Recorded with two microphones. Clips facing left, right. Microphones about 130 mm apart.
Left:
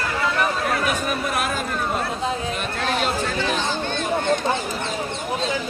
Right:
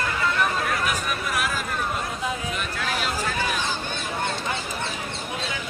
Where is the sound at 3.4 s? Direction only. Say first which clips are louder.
Left 4 dB; 25° left (ahead or behind).